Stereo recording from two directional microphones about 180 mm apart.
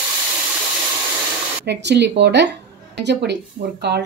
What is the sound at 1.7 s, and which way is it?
A woman's voice, 70° right (ahead or behind).